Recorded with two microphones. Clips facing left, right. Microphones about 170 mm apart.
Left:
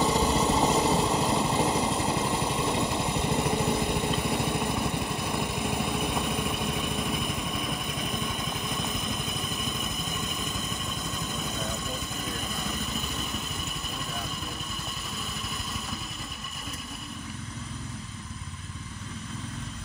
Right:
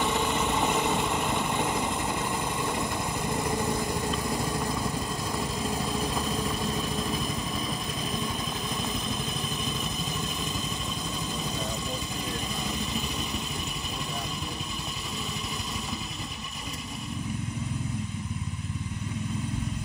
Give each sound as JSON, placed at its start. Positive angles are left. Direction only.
{"t": 0.0, "sound": "vehicle", "side_deg": 35}
{"t": 6.8, "sound": "vehicle", "side_deg": 10}
{"t": 12.6, "sound": "vehicle", "side_deg": 0}